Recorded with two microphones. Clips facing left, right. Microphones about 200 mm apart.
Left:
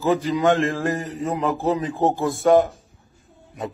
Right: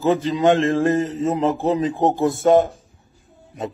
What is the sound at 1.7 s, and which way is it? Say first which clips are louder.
A man's voice: even; 20° right (ahead or behind).